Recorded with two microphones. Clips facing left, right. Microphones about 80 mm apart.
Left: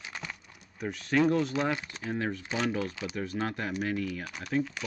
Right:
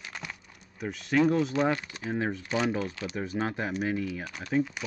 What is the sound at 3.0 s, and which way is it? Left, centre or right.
Speech, centre.